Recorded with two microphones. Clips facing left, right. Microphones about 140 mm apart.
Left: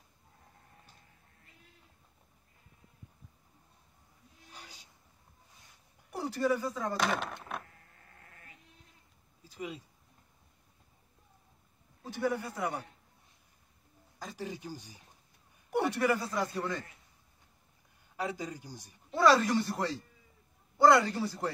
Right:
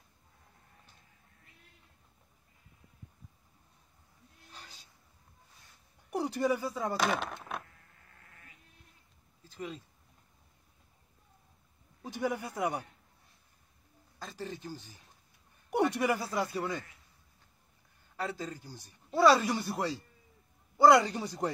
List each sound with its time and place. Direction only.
4.5 s a sound: 15° left (ahead or behind)
6.0 s speech: 15° right (ahead or behind)
9.4 s a sound: 10° left (ahead or behind)
12.0 s speech: 15° right (ahead or behind)
14.2 s a man's voice: 10° left (ahead or behind)
15.9 s speech: 15° right (ahead or behind)
18.1 s a man's voice: 15° left (ahead or behind)
19.1 s speech: 10° right (ahead or behind)